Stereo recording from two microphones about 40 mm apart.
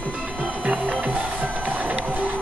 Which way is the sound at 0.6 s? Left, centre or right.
Right.